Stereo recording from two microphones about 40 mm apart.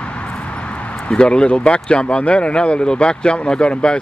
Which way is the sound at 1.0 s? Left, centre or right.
Left.